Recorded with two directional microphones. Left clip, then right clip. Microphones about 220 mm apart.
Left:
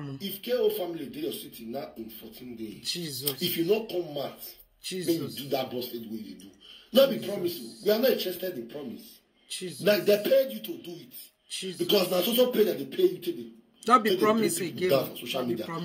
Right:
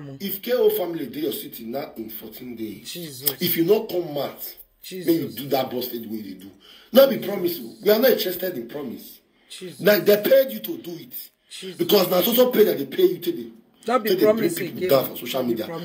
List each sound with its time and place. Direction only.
0.2 s speech: 35° right (ahead or behind)
2.8 s speech: 5° left (ahead or behind)
3.3 s speech: 35° right (ahead or behind)
9.5 s a man's voice: 5° left (ahead or behind)
9.8 s speech: 35° right (ahead or behind)